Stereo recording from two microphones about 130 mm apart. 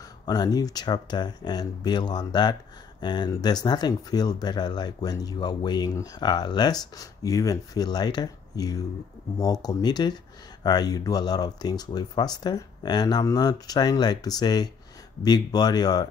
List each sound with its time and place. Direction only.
0.2 s speech: 30° left (ahead or behind)